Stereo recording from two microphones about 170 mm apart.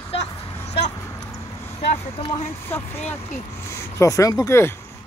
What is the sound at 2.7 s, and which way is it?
Speech, 10° left (ahead or behind).